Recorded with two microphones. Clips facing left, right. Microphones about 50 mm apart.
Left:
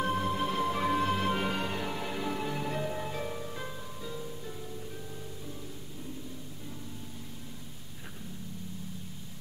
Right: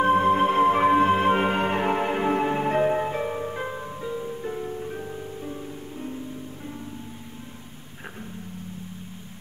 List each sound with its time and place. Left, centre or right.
0.0 s music: right